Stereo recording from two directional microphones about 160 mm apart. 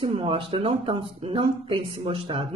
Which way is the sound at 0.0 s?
35° right (ahead or behind).